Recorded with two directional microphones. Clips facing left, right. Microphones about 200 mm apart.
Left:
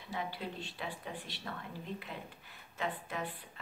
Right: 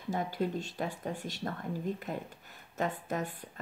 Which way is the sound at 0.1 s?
45° right (ahead or behind).